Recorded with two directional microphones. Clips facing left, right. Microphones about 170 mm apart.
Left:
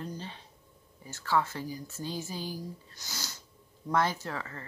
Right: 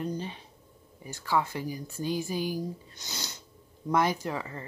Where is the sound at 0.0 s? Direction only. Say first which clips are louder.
Right 6 dB; 15° right (ahead or behind).